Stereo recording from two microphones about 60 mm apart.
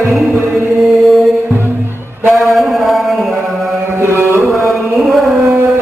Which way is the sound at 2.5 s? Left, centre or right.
Centre.